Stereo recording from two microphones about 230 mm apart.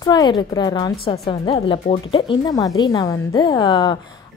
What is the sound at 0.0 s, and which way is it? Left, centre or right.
A woman's voice, centre.